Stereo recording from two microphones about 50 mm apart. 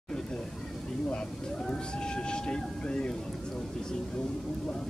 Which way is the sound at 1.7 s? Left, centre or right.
Centre.